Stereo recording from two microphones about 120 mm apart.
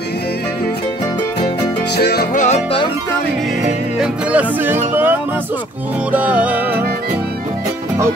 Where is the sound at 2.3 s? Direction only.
75° left (ahead or behind).